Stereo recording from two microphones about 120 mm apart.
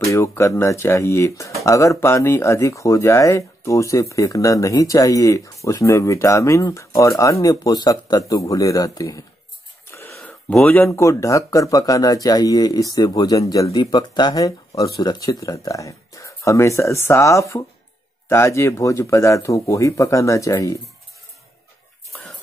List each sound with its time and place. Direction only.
0.1 s speech: 25° left (ahead or behind)
9.8 s wheeze: 20° left (ahead or behind)
10.7 s speech: 20° left (ahead or behind)